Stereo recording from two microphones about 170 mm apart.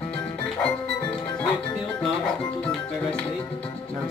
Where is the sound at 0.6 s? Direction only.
10° left (ahead or behind).